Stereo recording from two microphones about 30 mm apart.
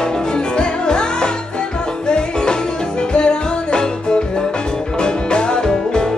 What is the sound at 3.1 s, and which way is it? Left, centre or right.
Music, left.